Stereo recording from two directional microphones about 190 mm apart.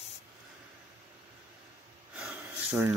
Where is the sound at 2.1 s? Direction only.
5° right (ahead or behind).